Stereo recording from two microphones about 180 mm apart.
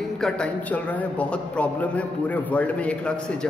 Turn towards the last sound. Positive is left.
turn(degrees=5)  # may be behind; listen again after turning